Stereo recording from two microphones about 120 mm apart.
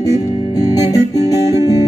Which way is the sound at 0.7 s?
30° left (ahead or behind).